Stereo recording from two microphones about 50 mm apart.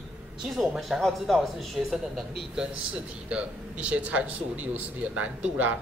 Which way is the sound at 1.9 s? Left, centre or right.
Centre.